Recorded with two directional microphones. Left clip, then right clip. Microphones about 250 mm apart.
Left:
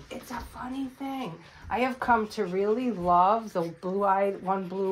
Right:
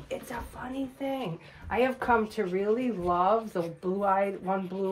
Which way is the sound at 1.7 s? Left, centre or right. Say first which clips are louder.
Even; centre.